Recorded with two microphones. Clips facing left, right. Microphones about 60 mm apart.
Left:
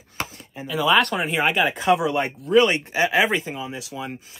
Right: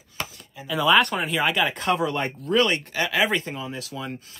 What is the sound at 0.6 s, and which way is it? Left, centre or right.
Speech, left.